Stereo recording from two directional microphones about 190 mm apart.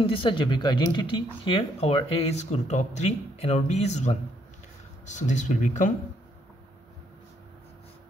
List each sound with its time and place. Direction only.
0.0 s speech: 25° left (ahead or behind)